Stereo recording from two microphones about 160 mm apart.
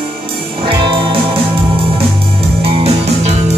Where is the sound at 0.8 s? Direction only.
30° right (ahead or behind).